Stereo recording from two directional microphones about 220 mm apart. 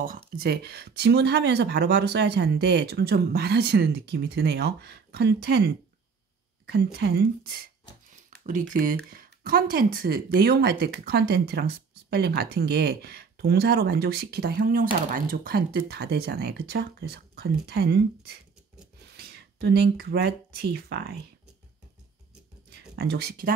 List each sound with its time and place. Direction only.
0.0 s speech: 40° right (ahead or behind)
22.8 s speech: 45° right (ahead or behind)